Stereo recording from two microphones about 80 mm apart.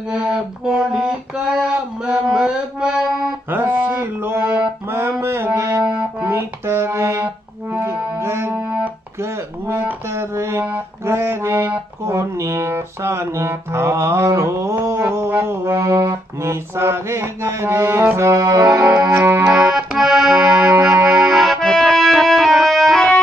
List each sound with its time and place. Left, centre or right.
0.1 s music: centre
3.4 s music: right
5.9 s music: right
10.1 s music: right
15.1 s music: right
15.8 s music: right
19.1 s music: right
19.7 s music: centre
21.2 s accordion: centre